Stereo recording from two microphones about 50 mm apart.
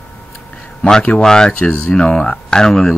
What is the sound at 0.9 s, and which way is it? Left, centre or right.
Speech, centre.